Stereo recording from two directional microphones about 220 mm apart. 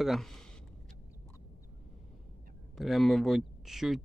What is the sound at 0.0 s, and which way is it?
Speech, centre (ahead or behind).